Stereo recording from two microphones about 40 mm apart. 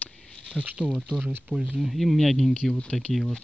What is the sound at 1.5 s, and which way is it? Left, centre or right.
Speech, centre.